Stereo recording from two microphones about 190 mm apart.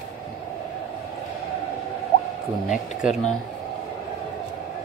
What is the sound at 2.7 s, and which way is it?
Speech, 5° right (ahead or behind).